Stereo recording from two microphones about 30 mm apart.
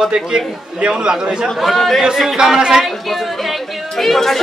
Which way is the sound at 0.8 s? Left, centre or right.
Right.